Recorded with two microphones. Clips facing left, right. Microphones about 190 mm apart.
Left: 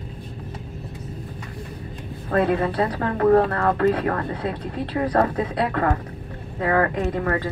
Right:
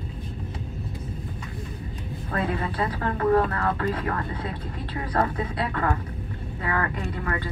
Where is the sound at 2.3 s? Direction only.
35° left (ahead or behind).